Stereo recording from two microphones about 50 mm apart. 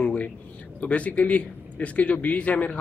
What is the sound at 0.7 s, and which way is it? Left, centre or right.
A man's voice, left.